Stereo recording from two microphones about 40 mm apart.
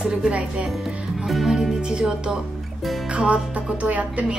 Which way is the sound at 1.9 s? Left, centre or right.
Centre.